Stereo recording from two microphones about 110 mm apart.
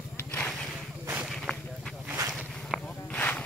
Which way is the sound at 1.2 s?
Centre (ahead or behind).